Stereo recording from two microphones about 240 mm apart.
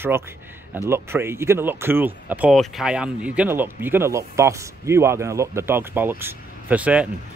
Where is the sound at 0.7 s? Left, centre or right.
Centre.